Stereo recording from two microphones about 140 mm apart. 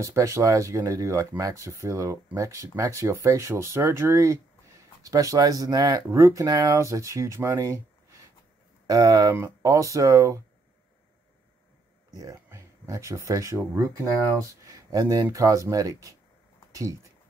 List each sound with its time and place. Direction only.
0.0 s speech: 20° right (ahead or behind)
8.8 s speech: 25° right (ahead or behind)
12.1 s speech: 25° right (ahead or behind)
14.7 s a sound: 25° right (ahead or behind)
15.2 s speech: 25° right (ahead or behind)